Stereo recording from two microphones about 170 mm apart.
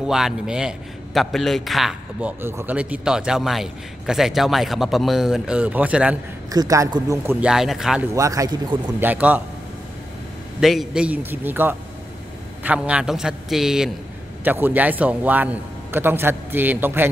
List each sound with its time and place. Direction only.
0.0 s a man's voice: 5° right (ahead or behind)
6.5 s speech: 20° right (ahead or behind)
7.3 s a man's voice: 5° right (ahead or behind)
8.1 s speech: 20° right (ahead or behind)
9.0 s a man's voice: 10° right (ahead or behind)
10.6 s a man's voice: centre (ahead or behind)